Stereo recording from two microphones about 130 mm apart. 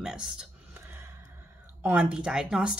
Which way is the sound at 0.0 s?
5° right (ahead or behind).